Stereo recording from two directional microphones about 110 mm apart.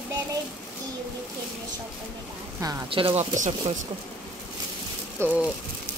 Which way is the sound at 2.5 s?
25° right (ahead or behind).